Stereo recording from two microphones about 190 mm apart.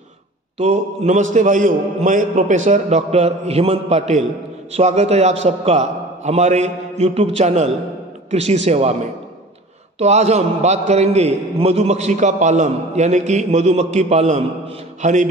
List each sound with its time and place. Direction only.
0.6 s a man's voice: 35° right (ahead or behind)